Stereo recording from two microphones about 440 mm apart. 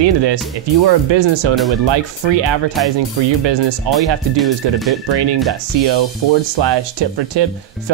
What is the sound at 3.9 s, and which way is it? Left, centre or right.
Speech, right.